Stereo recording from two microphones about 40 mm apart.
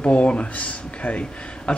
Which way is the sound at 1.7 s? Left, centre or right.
Left.